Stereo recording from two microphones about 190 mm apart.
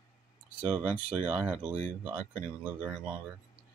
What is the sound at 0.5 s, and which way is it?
Speech, 5° right (ahead or behind).